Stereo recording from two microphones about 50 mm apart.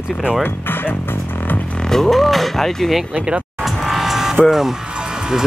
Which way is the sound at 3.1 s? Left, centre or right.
Right.